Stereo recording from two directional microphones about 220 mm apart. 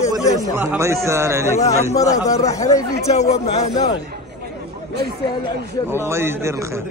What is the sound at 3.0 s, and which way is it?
Speech, 30° left (ahead or behind).